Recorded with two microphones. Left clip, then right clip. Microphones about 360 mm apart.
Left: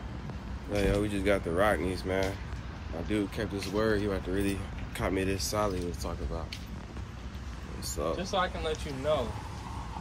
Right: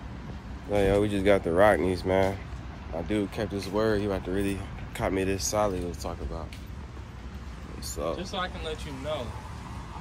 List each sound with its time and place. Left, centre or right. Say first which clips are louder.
0.7 s speech: right 5 dB; right
3.1 s speech: right 2 dB; centre
7.8 s speech: right 1 dB; centre
8.2 s speech: left 3 dB; centre